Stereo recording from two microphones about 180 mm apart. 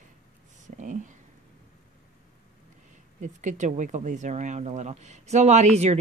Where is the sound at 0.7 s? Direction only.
45° right (ahead or behind).